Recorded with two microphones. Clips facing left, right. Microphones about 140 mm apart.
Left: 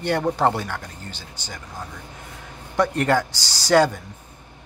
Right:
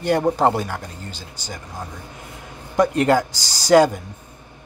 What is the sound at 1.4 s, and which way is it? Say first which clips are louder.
Speech: right 3 dB; 10° right (ahead or behind).